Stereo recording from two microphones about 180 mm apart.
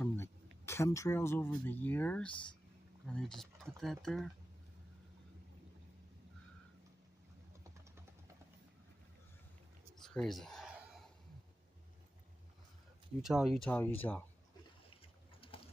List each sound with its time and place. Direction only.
0.0 s speech: 15° left (ahead or behind)
9.9 s a sound: centre (ahead or behind)
13.2 s speech: centre (ahead or behind)
13.6 s speech: 10° left (ahead or behind)
15.5 s typing: 30° left (ahead or behind)